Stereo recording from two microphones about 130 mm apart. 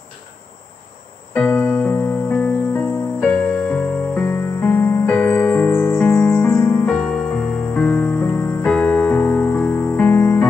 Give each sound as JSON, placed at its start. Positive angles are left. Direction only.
{"t": 1.3, "sound": "music", "side_deg": 10}
{"t": 7.0, "sound": "music", "side_deg": 5}